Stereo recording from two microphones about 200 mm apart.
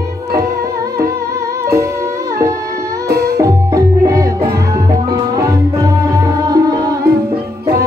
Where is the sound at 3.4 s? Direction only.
15° right (ahead or behind).